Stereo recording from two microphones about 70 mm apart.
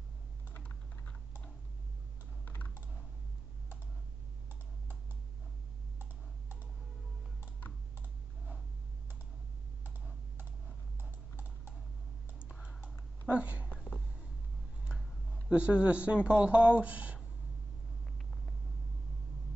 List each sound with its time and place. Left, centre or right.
0.5 s typing: left
2.4 s typing: left
11.0 s typing: right
12.4 s typing: centre
13.3 s a sound: centre
15.5 s speech: centre